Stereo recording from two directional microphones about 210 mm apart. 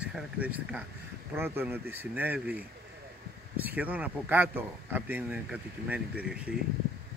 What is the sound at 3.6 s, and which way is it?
Speech, 10° right (ahead or behind).